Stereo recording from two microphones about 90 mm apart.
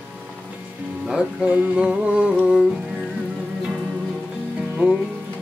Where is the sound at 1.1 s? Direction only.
10° right (ahead or behind).